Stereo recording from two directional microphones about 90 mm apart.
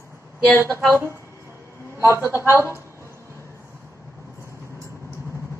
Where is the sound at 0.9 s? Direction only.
30° right (ahead or behind).